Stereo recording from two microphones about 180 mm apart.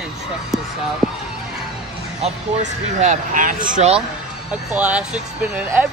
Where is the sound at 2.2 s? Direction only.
40° right (ahead or behind).